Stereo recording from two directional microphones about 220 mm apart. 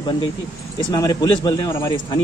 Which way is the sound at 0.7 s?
20° left (ahead or behind).